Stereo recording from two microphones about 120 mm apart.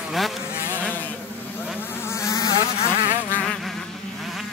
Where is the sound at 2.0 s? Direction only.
25° left (ahead or behind).